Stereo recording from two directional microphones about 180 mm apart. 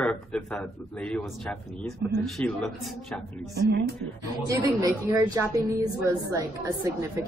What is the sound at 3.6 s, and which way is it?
Speech, 65° right (ahead or behind).